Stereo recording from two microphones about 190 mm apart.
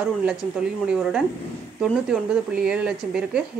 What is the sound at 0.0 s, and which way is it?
A woman's voice, 5° right (ahead or behind).